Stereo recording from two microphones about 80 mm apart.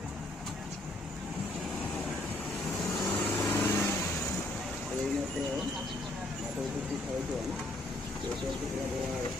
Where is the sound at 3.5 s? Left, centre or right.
Left.